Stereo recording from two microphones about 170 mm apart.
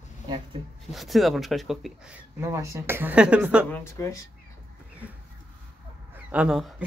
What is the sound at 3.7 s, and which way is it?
Speech, 15° left (ahead or behind).